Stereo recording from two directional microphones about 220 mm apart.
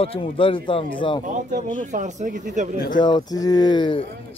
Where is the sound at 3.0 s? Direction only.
20° left (ahead or behind).